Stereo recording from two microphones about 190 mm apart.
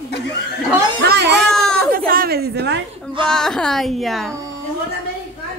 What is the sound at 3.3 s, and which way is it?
A woman's voice, centre (ahead or behind).